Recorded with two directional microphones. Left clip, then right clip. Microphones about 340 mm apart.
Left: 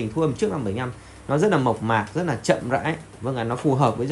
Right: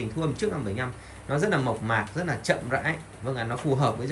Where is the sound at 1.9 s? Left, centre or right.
Centre.